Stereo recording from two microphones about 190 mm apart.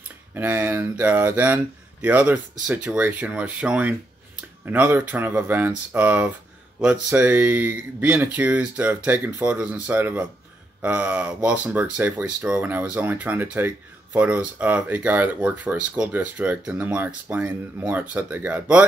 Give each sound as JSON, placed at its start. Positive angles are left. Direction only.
{"t": 0.3, "sound": "speech", "side_deg": -10}